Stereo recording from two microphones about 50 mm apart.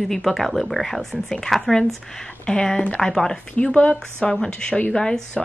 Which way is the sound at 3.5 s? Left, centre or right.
Left.